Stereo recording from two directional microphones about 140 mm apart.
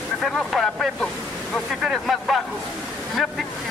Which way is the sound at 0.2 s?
Centre (ahead or behind).